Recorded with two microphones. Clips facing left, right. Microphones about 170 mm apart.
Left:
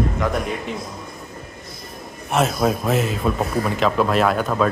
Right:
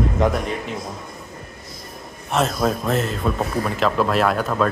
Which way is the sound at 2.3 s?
5° left (ahead or behind).